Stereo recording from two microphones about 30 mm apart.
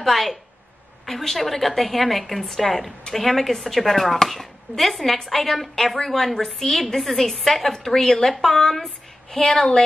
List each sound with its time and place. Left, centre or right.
0.0 s a woman's voice: centre; by 9.8 s left